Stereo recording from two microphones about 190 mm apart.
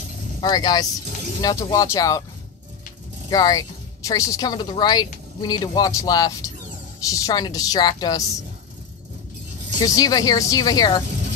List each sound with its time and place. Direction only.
0.4 s speech: 20° left (ahead or behind)
3.3 s speech: 20° left (ahead or behind)
9.8 s speech: 20° left (ahead or behind)
11.1 s vehicle: 40° right (ahead or behind)